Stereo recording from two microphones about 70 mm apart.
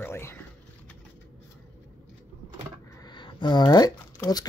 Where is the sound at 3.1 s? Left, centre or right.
Left.